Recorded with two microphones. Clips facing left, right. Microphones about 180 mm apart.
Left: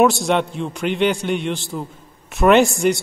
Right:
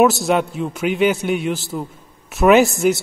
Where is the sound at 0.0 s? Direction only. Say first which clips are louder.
Right 1 dB; 5° right (ahead or behind).